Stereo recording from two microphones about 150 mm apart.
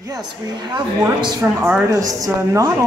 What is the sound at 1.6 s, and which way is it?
Speech, 20° right (ahead or behind).